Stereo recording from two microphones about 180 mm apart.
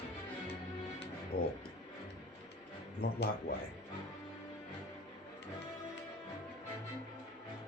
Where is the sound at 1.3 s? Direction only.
55° left (ahead or behind).